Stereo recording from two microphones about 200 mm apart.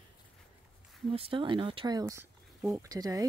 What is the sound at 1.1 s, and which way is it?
Speech, 25° right (ahead or behind).